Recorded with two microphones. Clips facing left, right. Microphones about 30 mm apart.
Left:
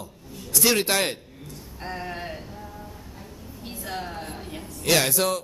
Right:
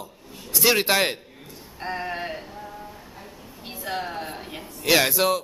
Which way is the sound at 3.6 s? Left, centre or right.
Centre.